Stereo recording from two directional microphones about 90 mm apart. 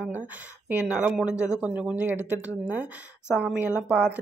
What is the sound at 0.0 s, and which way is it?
A woman's voice, 20° right (ahead or behind).